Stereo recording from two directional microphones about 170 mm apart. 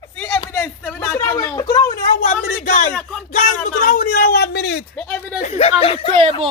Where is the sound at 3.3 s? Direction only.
50° left (ahead or behind); by 4.8 s 85° left.